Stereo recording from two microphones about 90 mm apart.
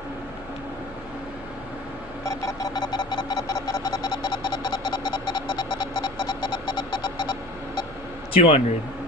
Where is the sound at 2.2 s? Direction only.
40° left (ahead or behind).